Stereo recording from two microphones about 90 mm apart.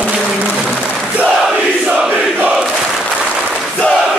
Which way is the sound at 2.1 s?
15° right (ahead or behind).